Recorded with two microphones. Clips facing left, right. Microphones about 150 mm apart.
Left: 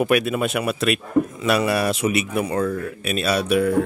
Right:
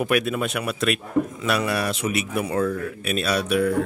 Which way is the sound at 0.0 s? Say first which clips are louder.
Left 3 dB; 5° left (ahead or behind).